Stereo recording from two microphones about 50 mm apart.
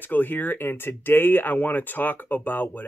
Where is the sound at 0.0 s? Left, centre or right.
Left.